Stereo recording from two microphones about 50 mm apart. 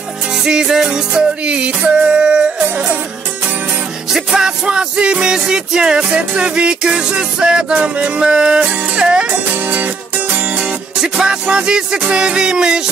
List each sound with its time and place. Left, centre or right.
0.4 s music: centre
2.6 s music: right
4.1 s music: centre
9.3 s music: right
10.6 s music: centre